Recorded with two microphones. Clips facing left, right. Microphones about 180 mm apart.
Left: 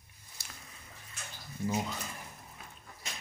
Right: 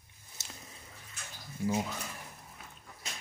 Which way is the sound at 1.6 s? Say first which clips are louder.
Right 1 dB; 5° right (ahead or behind).